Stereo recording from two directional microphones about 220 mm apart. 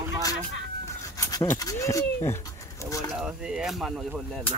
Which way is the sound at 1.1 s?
15° left (ahead or behind).